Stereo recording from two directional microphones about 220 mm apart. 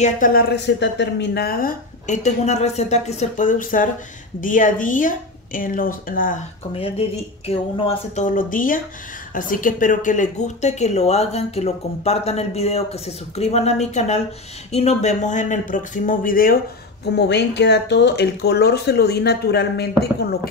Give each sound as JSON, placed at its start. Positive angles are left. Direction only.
{"t": 0.0, "sound": "a woman's voice", "side_deg": 40}
{"t": 6.7, "sound": "a woman's voice", "side_deg": 25}